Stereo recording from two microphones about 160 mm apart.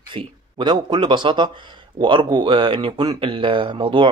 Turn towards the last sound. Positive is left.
turn(degrees=-30)  # may be behind; listen again after turning